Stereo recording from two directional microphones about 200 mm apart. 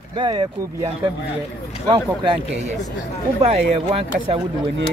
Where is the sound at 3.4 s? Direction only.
30° right (ahead or behind).